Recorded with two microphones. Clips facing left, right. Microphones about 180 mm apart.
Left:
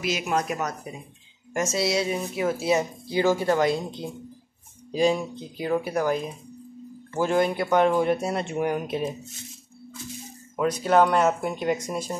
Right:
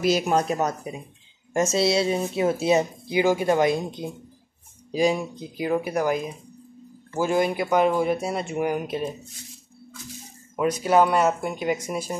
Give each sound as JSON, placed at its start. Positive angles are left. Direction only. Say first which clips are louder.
{"t": 0.0, "sound": "speech", "louder": "right 5 dB", "side_deg": -35}
{"t": 10.8, "sound": "speech", "louder": "even", "side_deg": -10}